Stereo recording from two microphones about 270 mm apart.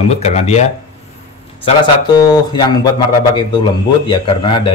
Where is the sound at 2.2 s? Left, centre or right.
Centre.